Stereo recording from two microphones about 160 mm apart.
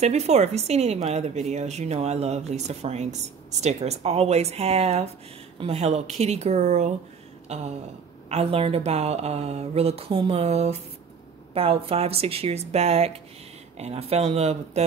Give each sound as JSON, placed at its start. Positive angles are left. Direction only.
{"t": 0.0, "sound": "speech", "side_deg": -45}
{"t": 7.4, "sound": "a sound", "side_deg": -40}
{"t": 8.3, "sound": "speech", "side_deg": -40}